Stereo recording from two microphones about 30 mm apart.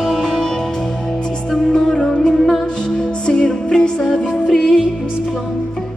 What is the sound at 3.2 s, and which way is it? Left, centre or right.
Music, left.